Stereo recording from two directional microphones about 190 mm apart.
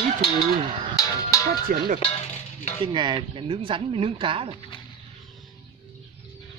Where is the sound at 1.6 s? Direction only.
50° right (ahead or behind).